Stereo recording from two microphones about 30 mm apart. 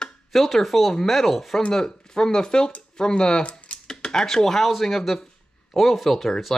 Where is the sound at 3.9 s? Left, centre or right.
Left.